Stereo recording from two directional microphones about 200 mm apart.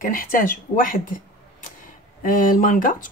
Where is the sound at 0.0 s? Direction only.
45° left (ahead or behind).